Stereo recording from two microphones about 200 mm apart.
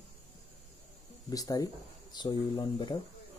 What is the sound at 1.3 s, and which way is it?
Speech, 20° left (ahead or behind).